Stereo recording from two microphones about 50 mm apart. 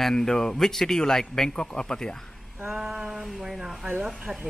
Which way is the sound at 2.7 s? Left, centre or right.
Centre.